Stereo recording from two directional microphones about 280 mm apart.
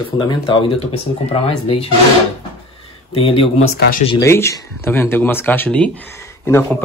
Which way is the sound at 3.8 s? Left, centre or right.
Left.